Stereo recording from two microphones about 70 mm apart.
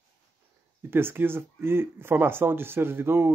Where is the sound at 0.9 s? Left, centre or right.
Right.